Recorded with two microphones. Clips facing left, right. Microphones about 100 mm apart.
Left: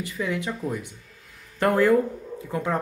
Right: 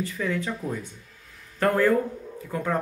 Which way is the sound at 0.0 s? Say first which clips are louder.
Even; 15° left (ahead or behind).